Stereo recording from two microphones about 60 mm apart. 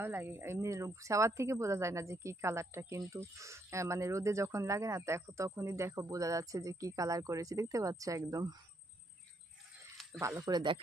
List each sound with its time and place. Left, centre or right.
0.0 s speech: right
10.1 s speech: right